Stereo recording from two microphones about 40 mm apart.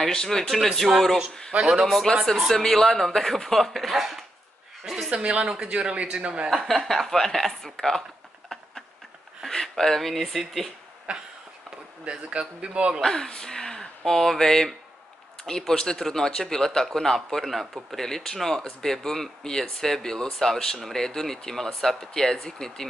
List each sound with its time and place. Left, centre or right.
0.1 s speech: centre
0.5 s speech: centre
1.6 s a man's voice: centre
2.5 s speech: centre
4.8 s a sound: centre
5.1 s a man's voice: right
5.4 s a man's voice: centre
6.8 s speech: centre
8.5 s a sound: centre
9.5 s speech: centre
12.1 s a man's voice: right
13.0 s speech: centre